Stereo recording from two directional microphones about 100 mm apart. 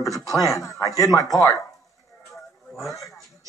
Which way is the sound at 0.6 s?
35° left (ahead or behind).